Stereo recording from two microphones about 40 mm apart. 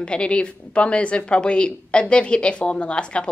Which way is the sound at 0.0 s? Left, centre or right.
Left.